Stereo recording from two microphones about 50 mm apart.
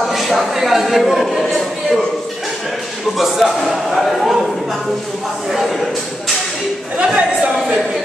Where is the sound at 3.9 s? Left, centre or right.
Centre.